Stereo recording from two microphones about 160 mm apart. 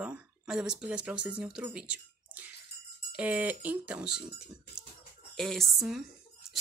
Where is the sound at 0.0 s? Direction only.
5° right (ahead or behind).